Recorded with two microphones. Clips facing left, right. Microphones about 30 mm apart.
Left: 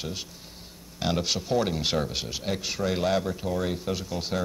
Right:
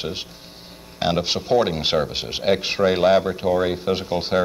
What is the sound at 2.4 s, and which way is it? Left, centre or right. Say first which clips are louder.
Speech: right 12 dB; right.